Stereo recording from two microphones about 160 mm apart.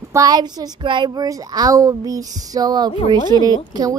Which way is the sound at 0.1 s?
25° right (ahead or behind).